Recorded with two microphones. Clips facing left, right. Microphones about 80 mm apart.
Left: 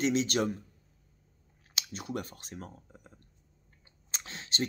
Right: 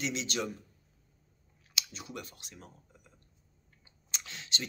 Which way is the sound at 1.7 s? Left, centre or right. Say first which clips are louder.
Left 5 dB; left.